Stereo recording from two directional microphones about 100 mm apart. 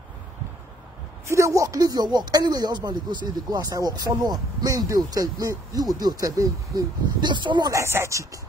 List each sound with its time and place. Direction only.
1.2 s speech: 30° right (ahead or behind)
7.2 s speech: 50° right (ahead or behind)
7.7 s speech: 25° right (ahead or behind)